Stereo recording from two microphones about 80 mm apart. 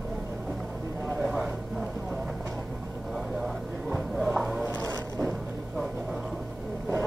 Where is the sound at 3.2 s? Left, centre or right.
Centre.